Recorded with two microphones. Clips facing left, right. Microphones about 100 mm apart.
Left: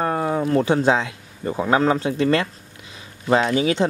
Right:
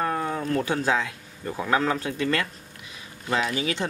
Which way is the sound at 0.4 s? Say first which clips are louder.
Left 7 dB; 25° left (ahead or behind).